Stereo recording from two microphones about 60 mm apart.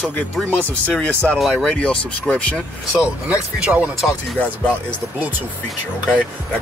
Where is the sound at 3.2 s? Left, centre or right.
Right.